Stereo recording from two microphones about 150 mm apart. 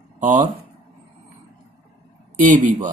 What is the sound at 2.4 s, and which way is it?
Speech, 60° right (ahead or behind).